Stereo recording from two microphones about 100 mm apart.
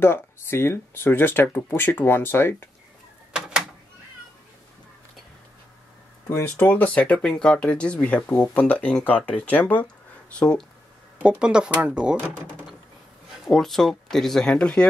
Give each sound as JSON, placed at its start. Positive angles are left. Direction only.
{"t": 0.0, "sound": "speech", "side_deg": 25}
{"t": 3.3, "sound": "a sound", "side_deg": -5}
{"t": 6.2, "sound": "speech", "side_deg": 25}
{"t": 11.2, "sound": "speech", "side_deg": -10}